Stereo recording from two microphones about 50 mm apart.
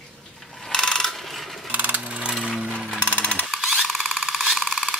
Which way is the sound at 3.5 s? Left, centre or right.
Centre.